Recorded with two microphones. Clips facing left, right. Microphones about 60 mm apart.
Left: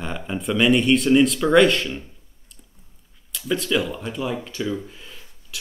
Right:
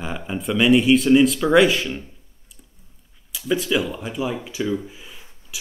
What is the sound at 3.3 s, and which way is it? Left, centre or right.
Speech, centre.